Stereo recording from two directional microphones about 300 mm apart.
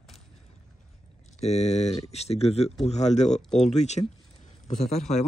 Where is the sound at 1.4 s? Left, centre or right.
Left.